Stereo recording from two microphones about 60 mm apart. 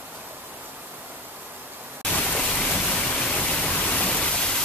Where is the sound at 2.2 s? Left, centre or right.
Centre.